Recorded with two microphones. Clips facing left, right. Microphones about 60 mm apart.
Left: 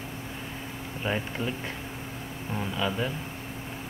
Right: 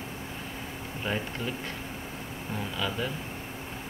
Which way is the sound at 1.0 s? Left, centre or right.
Centre.